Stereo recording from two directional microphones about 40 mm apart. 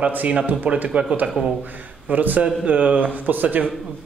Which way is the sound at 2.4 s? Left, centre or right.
Right.